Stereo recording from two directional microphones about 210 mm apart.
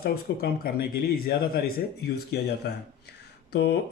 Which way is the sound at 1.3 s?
45° left (ahead or behind).